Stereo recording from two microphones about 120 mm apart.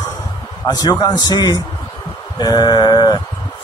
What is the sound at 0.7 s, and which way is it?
Speech, 35° left (ahead or behind).